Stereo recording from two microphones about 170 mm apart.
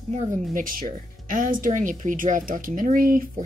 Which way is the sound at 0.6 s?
50° right (ahead or behind).